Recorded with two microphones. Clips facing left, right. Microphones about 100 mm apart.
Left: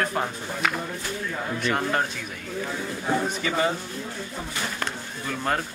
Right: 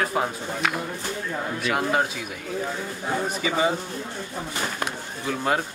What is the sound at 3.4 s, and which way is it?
Speech, 10° right (ahead or behind).